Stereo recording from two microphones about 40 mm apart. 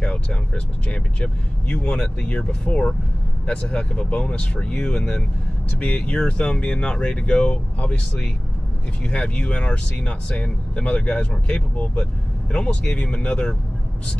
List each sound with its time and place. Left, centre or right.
0.0 s vehicle: left
0.8 s speech: left
5.8 s speech: left